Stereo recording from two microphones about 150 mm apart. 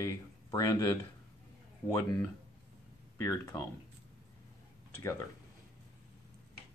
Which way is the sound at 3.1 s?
20° left (ahead or behind).